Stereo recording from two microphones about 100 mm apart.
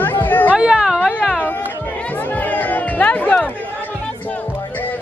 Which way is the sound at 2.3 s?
15° left (ahead or behind).